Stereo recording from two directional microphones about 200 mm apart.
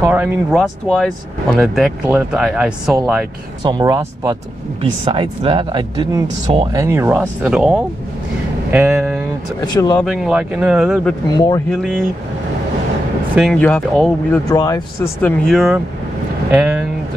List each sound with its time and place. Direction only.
0.0 s speech: 10° right (ahead or behind)
3.6 s speech: 20° right (ahead or behind); by 9.2 s centre (ahead or behind)
9.6 s speech: 20° left (ahead or behind)
10.0 s speech: centre (ahead or behind)
11.2 s speech: 20° left (ahead or behind)
11.7 s speech: centre (ahead or behind)
13.3 s speech: 5° right (ahead or behind)
14.5 s speech: 15° left (ahead or behind)
15.2 s speech: centre (ahead or behind)